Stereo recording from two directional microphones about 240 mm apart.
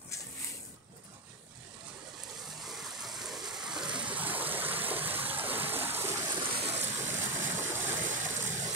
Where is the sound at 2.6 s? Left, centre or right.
Centre.